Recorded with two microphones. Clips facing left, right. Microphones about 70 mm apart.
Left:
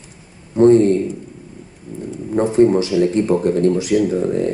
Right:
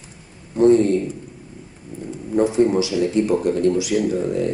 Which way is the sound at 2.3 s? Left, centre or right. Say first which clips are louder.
Left 3 dB; left.